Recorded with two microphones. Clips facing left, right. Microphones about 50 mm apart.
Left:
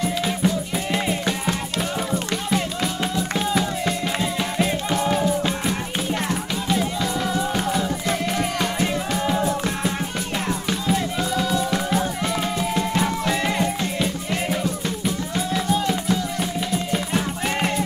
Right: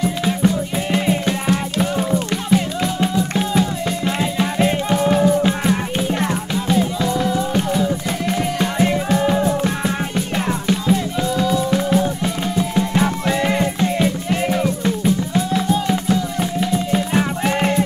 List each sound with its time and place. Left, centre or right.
0.0 s music: centre
2.1 s music: centre
8.4 s music: centre